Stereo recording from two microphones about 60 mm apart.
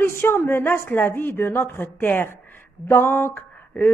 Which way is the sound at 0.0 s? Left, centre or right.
Left.